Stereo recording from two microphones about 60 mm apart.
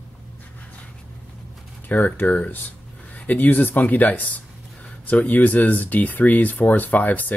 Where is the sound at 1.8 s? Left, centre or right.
Left.